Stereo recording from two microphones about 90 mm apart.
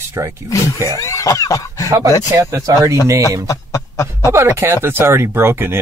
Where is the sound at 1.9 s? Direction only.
35° right (ahead or behind).